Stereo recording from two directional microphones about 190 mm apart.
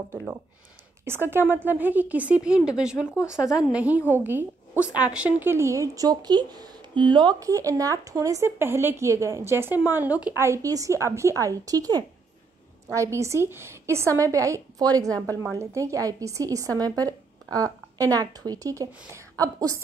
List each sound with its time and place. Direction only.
1.0 s a woman's voice: 10° right (ahead or behind)